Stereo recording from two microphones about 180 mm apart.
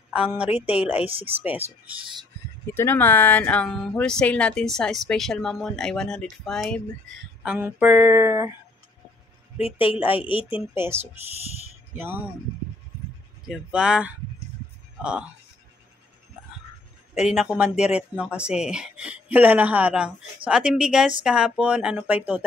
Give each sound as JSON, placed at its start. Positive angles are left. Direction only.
{"t": 0.1, "sound": "a woman's voice", "side_deg": -5}
{"t": 2.6, "sound": "speech", "side_deg": 15}
{"t": 7.4, "sound": "speech", "side_deg": -10}
{"t": 9.6, "sound": "speech", "side_deg": 30}
{"t": 10.5, "sound": "speech", "side_deg": -15}
{"t": 13.5, "sound": "speech", "side_deg": -5}
{"t": 17.1, "sound": "speech", "side_deg": 0}